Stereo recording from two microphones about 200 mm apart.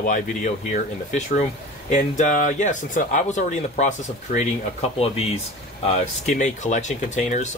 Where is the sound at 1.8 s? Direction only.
40° left (ahead or behind).